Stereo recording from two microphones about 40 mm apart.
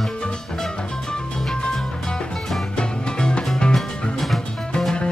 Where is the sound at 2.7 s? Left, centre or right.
Left.